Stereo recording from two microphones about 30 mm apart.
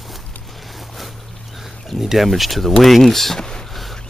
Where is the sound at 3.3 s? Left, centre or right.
Left.